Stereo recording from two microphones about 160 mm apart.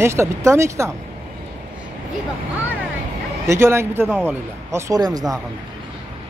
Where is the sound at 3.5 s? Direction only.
15° right (ahead or behind).